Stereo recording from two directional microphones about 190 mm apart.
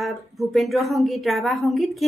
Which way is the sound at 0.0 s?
Centre (ahead or behind).